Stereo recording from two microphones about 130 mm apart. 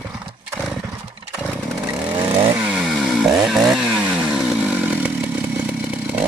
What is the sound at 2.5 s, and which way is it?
Chainsaw, 5° right (ahead or behind).